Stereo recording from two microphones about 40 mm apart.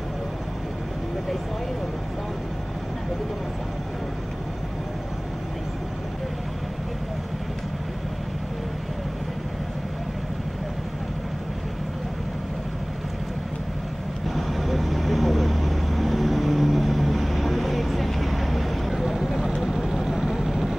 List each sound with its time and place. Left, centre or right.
14.2 s vehicle: centre